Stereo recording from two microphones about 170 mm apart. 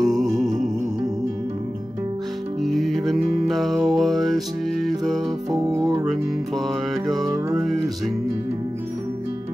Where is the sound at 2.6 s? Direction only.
Centre (ahead or behind).